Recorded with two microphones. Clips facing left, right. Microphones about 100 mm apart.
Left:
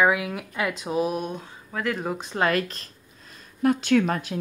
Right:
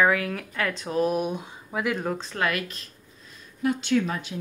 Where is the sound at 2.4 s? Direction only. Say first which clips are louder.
Left 6 dB; 35° left (ahead or behind).